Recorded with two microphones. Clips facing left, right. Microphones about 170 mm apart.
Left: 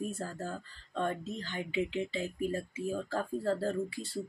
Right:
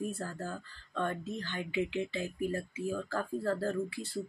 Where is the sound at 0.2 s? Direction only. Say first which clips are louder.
Left 1 dB; 20° left (ahead or behind).